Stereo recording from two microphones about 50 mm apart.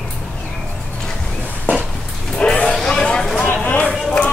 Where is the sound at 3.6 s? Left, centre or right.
Left.